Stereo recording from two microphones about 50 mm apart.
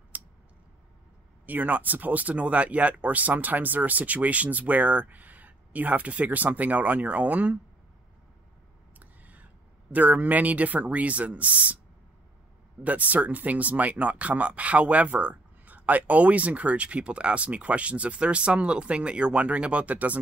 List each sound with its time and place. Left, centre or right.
0.1 s tick: right
1.4 s speech: right
9.0 s a sound: right
9.9 s speech: right
12.8 s speech: right